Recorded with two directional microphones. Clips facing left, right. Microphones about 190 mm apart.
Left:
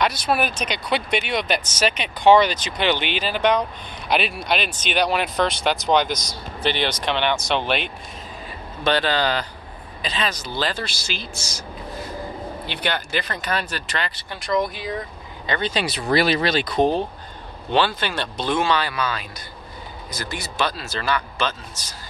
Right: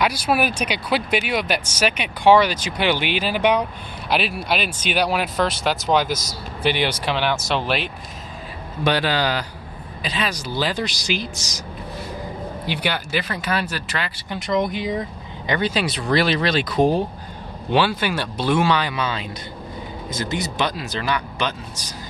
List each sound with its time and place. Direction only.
0.0 s speech: 10° right (ahead or behind)
12.6 s speech: 10° right (ahead or behind)
14.4 s speech: 20° right (ahead or behind)